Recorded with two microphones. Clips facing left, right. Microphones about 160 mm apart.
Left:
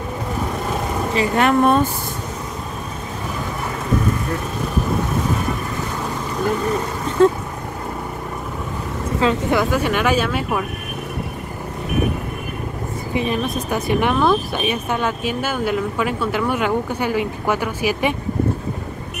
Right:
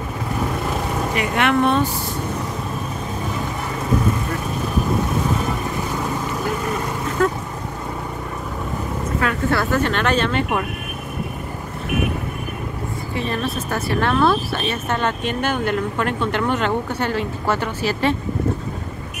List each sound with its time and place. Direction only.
1.1 s speech: 35° left (ahead or behind)
7.2 s speech: 25° left (ahead or behind)
9.2 s speech: 20° left (ahead or behind)
13.1 s speech: 15° left (ahead or behind)